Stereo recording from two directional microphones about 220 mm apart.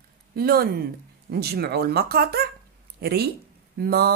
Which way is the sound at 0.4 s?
45° right (ahead or behind).